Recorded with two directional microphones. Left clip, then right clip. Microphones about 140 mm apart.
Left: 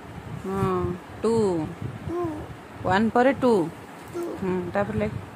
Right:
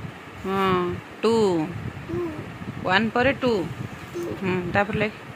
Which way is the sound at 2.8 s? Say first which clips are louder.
Even; 20° left (ahead or behind).